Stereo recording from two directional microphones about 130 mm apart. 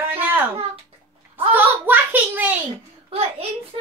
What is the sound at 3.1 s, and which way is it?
Speech, 50° right (ahead or behind).